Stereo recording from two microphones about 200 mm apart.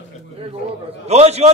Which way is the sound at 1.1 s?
30° right (ahead or behind).